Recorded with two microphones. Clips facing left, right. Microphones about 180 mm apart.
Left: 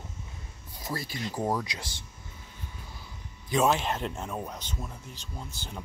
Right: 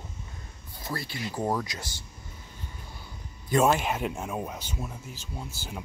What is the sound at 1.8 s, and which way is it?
Speech, 30° left (ahead or behind).